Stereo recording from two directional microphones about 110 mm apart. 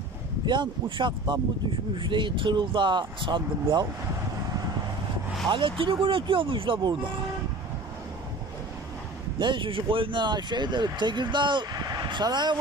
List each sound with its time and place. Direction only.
0.5 s speech: 45° right (ahead or behind)
4.5 s vehicle: 35° right (ahead or behind)
5.5 s speech: 50° right (ahead or behind)
9.4 s speech: 50° right (ahead or behind)